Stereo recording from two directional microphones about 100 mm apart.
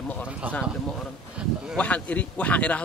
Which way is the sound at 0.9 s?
5° right (ahead or behind).